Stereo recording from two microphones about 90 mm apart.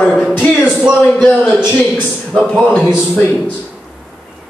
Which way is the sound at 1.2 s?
15° left (ahead or behind).